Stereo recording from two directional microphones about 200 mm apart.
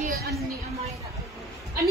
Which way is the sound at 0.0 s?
50° right (ahead or behind).